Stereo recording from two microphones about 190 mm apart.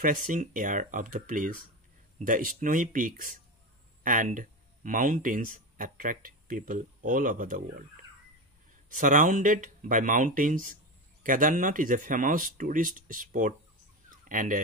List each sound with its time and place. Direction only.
0.0 s speech: 45° right (ahead or behind)
8.8 s speech: 45° right (ahead or behind)